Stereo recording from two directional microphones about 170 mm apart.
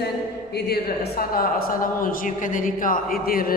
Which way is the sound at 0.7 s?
60° left (ahead or behind).